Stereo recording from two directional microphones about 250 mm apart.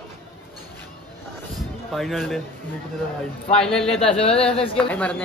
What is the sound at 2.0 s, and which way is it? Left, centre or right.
Speech, centre.